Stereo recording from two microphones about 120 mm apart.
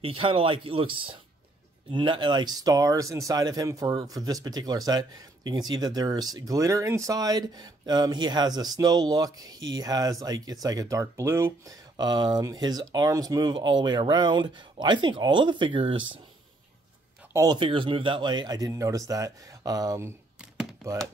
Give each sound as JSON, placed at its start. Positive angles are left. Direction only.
{"t": 0.0, "sound": "speech", "side_deg": -45}
{"t": 17.5, "sound": "speech", "side_deg": -45}